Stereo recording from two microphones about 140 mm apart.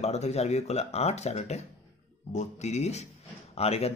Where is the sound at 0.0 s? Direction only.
50° left (ahead or behind).